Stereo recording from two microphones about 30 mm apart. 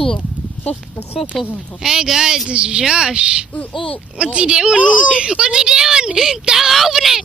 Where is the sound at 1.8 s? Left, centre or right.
Centre.